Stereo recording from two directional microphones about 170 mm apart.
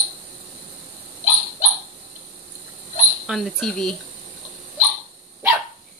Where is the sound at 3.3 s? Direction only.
Centre (ahead or behind).